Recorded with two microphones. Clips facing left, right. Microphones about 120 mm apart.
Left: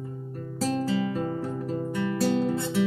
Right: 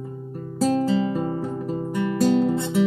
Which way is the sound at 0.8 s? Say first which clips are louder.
Right 5 dB; 20° right (ahead or behind).